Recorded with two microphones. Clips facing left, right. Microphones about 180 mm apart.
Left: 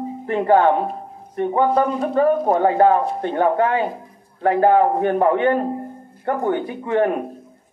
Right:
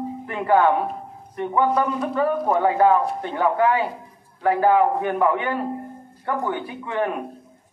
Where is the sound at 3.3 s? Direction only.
45° left (ahead or behind).